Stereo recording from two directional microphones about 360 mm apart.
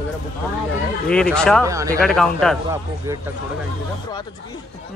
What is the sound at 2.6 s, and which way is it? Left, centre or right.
Speech, centre.